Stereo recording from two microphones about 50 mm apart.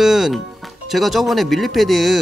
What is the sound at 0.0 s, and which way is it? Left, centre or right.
Speech, centre.